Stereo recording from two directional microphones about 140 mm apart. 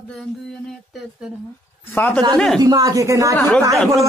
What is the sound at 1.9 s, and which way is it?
Speech, 15° left (ahead or behind).